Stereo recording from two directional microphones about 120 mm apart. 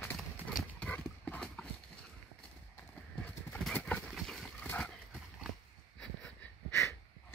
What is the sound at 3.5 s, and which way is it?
Horse, 10° left (ahead or behind).